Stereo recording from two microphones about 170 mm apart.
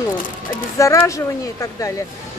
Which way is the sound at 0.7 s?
20° left (ahead or behind).